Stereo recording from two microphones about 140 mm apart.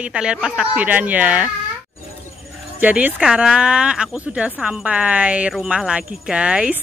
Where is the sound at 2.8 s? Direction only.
10° right (ahead or behind).